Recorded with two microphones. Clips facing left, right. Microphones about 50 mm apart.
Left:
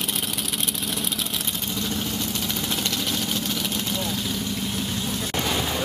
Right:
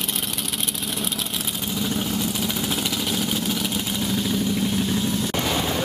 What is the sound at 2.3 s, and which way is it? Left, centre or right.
Vehicle, centre.